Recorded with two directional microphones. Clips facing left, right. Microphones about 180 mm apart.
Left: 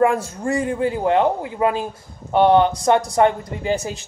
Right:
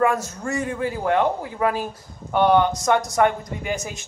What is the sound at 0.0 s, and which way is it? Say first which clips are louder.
Speech: left 3 dB; 30° left (ahead or behind).